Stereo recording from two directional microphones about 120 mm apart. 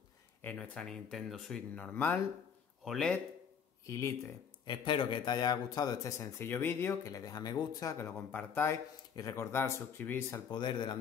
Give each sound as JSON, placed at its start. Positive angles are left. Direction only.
{"t": 0.4, "sound": "a man's voice", "side_deg": 10}
{"t": 3.8, "sound": "speech", "side_deg": 25}
{"t": 4.6, "sound": "speech", "side_deg": 40}
{"t": 8.3, "sound": "speech", "side_deg": 15}
{"t": 10.5, "sound": "speech", "side_deg": 40}